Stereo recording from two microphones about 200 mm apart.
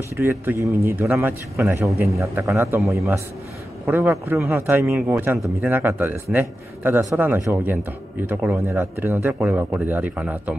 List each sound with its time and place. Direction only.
0.2 s speech: 10° right (ahead or behind)
3.8 s speech: 10° right (ahead or behind)